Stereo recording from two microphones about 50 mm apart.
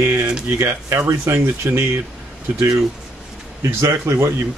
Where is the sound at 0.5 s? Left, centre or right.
Right.